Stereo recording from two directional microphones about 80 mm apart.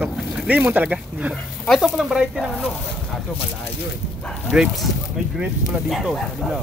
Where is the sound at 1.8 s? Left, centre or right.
Centre.